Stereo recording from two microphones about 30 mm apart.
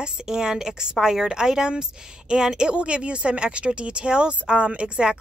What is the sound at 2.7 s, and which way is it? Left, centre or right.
A woman's voice, right.